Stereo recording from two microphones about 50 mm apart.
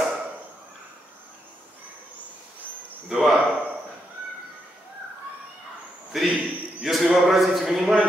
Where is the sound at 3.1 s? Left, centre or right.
Centre.